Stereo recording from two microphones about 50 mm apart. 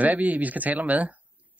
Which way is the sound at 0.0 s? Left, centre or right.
Right.